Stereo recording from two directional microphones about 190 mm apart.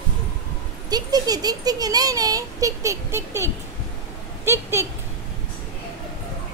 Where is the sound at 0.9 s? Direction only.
20° right (ahead or behind).